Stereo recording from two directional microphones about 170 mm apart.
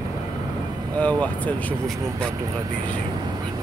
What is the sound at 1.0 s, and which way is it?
Speech, 10° left (ahead or behind).